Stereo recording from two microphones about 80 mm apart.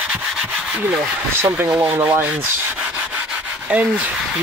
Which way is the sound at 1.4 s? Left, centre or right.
Right.